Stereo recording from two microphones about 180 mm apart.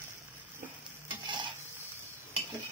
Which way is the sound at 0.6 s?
50° right (ahead or behind).